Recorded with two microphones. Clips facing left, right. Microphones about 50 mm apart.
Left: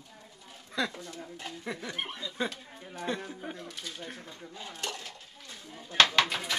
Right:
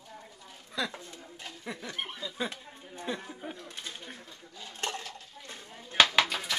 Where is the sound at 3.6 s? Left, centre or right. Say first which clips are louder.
Left 1 dB; right.